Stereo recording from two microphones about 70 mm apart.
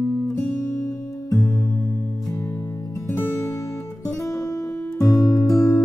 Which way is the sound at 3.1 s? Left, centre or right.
Left.